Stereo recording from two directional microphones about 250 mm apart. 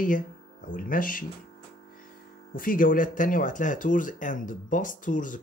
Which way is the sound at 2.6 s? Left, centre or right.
Left.